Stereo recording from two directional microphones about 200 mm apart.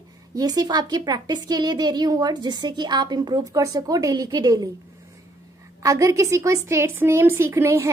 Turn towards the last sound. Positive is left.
turn(degrees=-15)  # may be behind; listen again after turning